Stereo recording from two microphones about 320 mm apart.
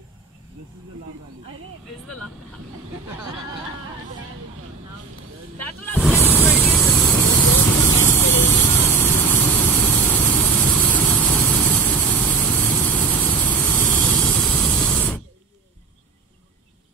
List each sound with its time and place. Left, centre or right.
5.6 s vehicle: centre